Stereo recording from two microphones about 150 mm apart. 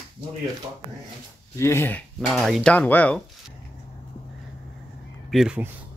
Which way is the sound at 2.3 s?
Centre (ahead or behind).